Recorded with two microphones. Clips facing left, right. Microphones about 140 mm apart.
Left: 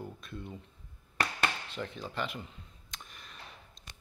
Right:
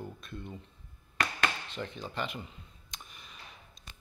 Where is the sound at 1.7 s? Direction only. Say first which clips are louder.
Even; centre (ahead or behind).